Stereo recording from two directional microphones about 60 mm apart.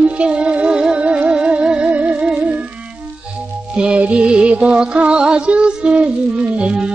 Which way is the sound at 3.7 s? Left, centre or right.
Centre.